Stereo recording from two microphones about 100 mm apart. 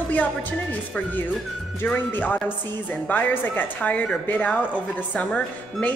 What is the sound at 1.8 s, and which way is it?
A woman's voice, 15° left (ahead or behind).